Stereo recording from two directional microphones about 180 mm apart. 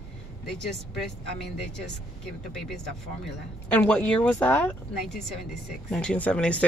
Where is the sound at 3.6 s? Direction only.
5° left (ahead or behind).